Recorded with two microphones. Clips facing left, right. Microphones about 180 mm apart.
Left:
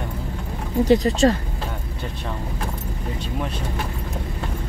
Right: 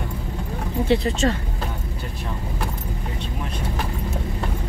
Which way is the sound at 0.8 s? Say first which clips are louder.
Left 4 dB; 40° left (ahead or behind).